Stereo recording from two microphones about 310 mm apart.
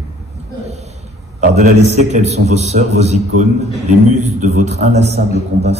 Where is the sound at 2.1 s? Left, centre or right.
Right.